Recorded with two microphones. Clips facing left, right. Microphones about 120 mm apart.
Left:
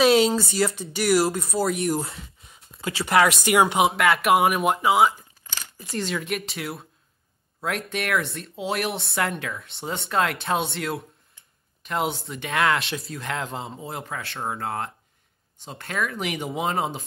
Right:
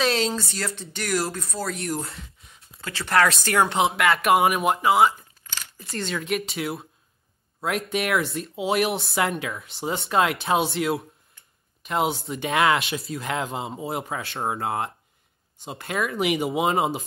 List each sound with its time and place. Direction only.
0.0 s speech: 5° left (ahead or behind); by 12.1 s 10° right (ahead or behind)
12.1 s speech: 25° right (ahead or behind)
12.5 s speech: 10° right (ahead or behind)